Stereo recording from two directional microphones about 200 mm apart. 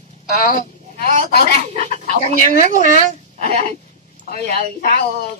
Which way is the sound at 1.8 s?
35° right (ahead or behind).